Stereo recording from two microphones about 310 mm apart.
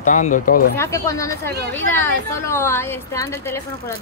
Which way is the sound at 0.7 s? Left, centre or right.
Centre.